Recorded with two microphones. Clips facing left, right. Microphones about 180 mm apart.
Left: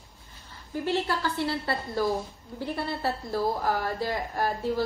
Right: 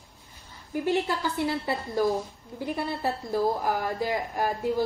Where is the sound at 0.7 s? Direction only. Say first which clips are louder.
Right 2 dB; 15° right (ahead or behind).